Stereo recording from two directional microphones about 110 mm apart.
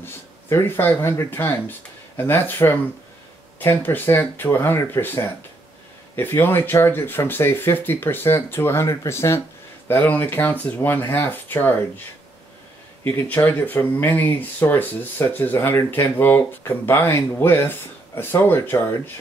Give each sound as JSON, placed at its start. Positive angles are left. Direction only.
{"t": 0.0, "sound": "speech", "side_deg": 20}
{"t": 13.0, "sound": "speech", "side_deg": 20}